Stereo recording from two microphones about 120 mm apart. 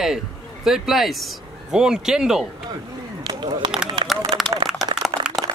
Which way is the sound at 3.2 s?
40° right (ahead or behind).